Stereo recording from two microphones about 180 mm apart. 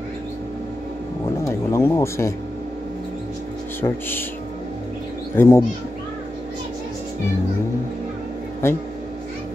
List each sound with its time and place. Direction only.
1.4 s speech: 15° left (ahead or behind)
3.8 s speech: 20° left (ahead or behind)
5.3 s speech: 10° left (ahead or behind)
8.6 s speech: 15° left (ahead or behind)